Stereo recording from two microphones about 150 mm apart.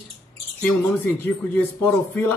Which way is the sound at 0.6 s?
15° left (ahead or behind).